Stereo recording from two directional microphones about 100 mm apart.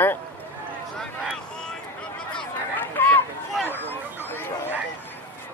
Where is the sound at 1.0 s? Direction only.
5° left (ahead or behind).